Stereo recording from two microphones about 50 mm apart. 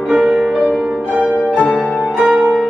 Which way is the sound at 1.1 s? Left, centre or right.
Right.